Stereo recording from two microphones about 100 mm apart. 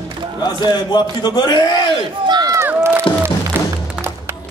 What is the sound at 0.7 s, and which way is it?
A man's voice, 45° left (ahead or behind).